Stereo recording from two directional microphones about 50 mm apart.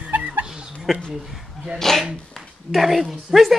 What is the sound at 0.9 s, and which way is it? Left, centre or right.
Speech, centre.